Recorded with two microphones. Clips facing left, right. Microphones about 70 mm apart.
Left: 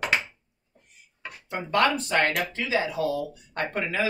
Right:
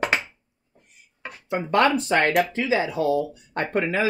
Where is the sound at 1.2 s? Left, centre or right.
Right.